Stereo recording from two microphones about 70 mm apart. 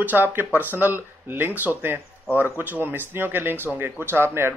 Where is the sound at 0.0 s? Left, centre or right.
Right.